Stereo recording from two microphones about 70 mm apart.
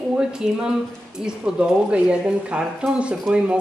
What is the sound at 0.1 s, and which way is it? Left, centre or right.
Speech, centre.